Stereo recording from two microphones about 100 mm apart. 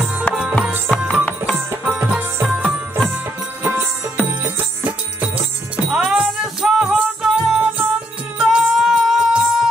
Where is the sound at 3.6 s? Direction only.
15° right (ahead or behind).